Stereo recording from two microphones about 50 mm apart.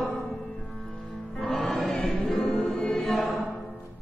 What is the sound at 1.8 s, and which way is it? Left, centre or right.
Choir, centre.